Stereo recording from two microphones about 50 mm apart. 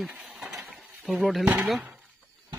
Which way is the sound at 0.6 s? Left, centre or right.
Centre.